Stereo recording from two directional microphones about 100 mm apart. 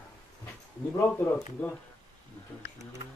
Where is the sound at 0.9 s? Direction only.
20° left (ahead or behind).